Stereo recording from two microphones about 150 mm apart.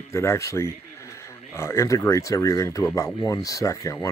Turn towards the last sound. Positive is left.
turn(degrees=20)  # may be behind; listen again after turning